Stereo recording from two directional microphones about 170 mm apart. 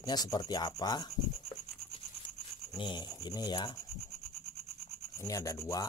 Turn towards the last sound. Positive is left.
turn(degrees=20)  # may be behind; listen again after turning